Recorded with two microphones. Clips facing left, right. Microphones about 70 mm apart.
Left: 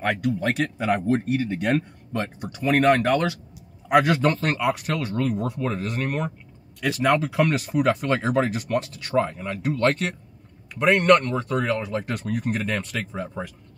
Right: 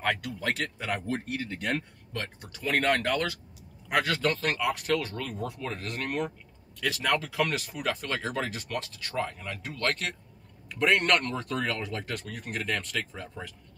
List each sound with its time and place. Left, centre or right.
0.0 s speech: centre